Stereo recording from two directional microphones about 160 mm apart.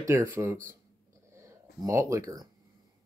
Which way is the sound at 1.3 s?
20° right (ahead or behind).